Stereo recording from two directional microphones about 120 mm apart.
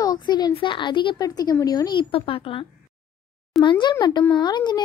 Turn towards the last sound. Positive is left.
turn(degrees=35)  # may be behind; listen again after turning